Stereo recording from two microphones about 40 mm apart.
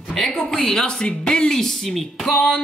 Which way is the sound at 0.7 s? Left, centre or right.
Centre.